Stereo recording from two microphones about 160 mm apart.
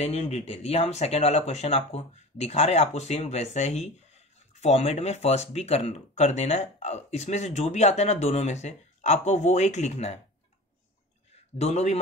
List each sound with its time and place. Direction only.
0.0 s speech: 40° left (ahead or behind)
11.5 s speech: 45° left (ahead or behind)